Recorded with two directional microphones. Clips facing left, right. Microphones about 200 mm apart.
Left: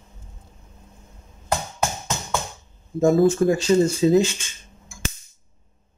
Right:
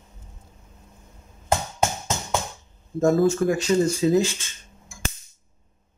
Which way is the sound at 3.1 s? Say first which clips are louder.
Left 4 dB; 25° left (ahead or behind).